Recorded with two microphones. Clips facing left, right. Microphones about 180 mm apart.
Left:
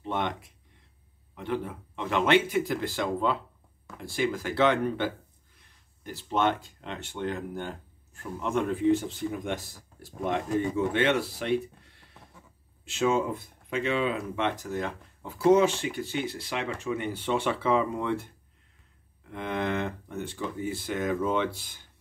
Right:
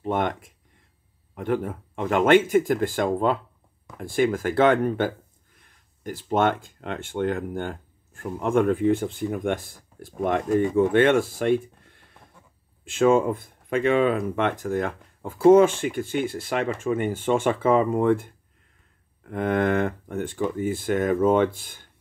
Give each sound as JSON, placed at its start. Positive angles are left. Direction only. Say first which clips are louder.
{"t": 0.0, "sound": "speech", "louder": "right 6 dB", "side_deg": -50}